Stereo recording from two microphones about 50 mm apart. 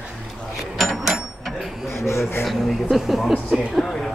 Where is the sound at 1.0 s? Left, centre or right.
Centre.